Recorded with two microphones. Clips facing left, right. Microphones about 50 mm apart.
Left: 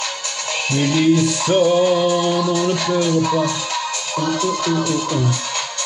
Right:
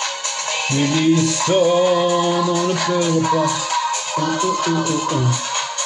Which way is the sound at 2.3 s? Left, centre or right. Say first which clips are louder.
Even; right.